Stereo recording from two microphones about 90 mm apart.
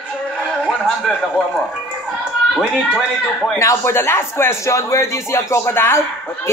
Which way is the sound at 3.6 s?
30° left (ahead or behind).